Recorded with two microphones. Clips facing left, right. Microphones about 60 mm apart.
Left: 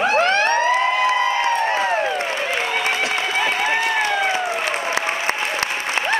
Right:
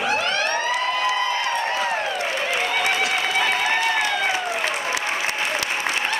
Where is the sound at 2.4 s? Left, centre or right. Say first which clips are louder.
Left 1 dB; centre.